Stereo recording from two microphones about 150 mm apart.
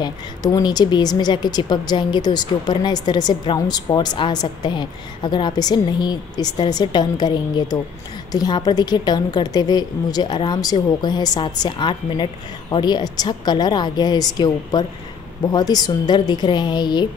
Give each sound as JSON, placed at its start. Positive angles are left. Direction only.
{"t": 0.0, "sound": "speech", "side_deg": 25}